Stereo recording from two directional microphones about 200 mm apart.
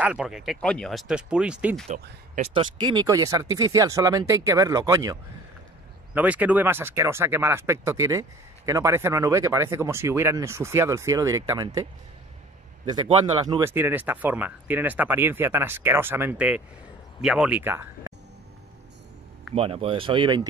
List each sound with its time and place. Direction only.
0.0 s speech: 5° right (ahead or behind)
2.3 s speech: 30° right (ahead or behind)
13.5 s speech: 15° right (ahead or behind)
19.5 s speech: 30° right (ahead or behind)